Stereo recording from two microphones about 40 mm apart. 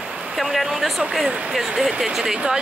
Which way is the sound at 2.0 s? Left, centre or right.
Centre.